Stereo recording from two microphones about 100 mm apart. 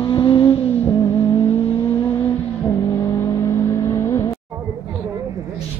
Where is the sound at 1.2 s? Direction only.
90° left.